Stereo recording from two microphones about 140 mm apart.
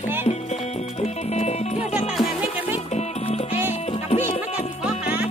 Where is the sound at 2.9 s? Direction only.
50° left (ahead or behind).